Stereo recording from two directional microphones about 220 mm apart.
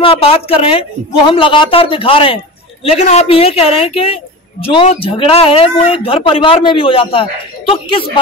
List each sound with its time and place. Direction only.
0.0 s speech: 25° left (ahead or behind)